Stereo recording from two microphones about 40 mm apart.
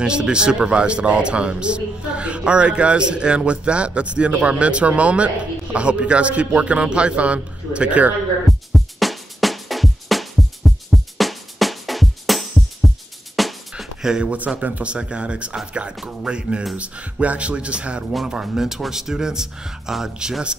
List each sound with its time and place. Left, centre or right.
0.0 s speech: right
8.5 s music: centre
14.0 s speech: centre
14.6 s speech: right
18.2 s speech: centre